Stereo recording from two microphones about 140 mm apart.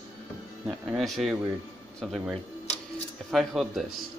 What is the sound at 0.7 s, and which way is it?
Speech, 5° right (ahead or behind).